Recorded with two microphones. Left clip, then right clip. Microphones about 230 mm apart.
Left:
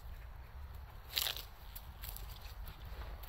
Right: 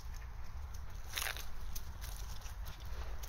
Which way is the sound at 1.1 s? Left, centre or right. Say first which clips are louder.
Left 3 dB; centre.